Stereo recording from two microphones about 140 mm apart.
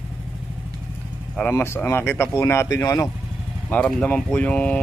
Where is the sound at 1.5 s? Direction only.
15° left (ahead or behind).